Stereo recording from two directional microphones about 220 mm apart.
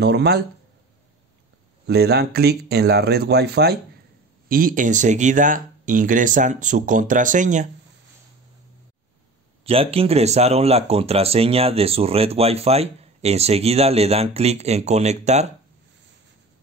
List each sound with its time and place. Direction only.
0.0 s speech: 50° right (ahead or behind)
1.9 s speech: 50° right (ahead or behind)
9.7 s speech: 25° right (ahead or behind)